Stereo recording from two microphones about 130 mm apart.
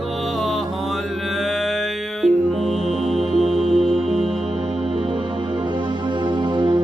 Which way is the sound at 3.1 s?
Centre (ahead or behind).